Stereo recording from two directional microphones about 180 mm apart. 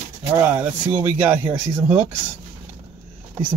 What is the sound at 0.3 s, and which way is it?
Speech, 10° right (ahead or behind).